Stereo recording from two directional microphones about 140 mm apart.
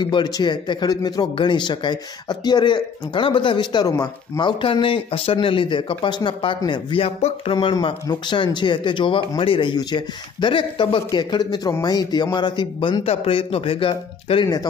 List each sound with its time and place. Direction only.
0.0 s speech: 30° left (ahead or behind)
7.2 s speech: 50° left (ahead or behind)
7.5 s speech: 35° left (ahead or behind)
13.0 s speech: 45° left (ahead or behind)